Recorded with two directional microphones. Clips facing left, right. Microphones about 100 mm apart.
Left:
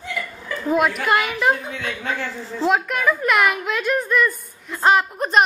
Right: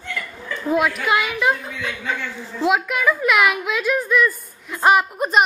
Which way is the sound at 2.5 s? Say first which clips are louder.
Even; 5° right (ahead or behind).